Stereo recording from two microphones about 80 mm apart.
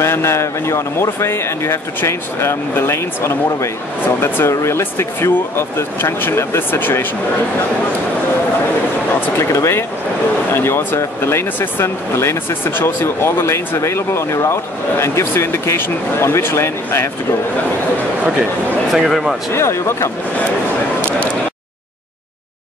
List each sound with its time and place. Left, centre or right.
0.0 s speech: left
9.2 s speech: left
18.9 s speech: centre
19.5 s speech: left